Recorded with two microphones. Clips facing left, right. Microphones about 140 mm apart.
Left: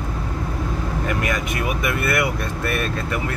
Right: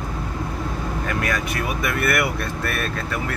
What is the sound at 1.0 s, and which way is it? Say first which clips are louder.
Speech: left 1 dB; 15° left (ahead or behind).